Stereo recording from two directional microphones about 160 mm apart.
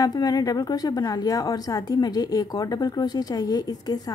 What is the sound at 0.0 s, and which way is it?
A woman's voice, 25° left (ahead or behind).